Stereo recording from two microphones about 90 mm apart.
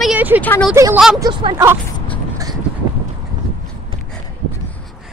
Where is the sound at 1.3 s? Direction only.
75° right (ahead or behind).